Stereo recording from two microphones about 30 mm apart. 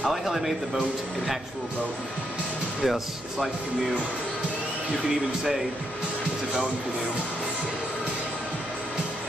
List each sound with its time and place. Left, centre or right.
0.0 s speech: centre
2.8 s speech: centre